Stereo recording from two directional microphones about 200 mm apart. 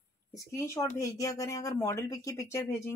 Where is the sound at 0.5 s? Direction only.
15° left (ahead or behind).